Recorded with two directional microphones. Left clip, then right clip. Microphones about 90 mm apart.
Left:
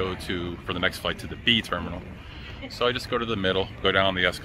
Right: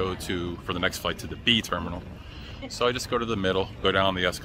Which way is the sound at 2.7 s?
40° right (ahead or behind).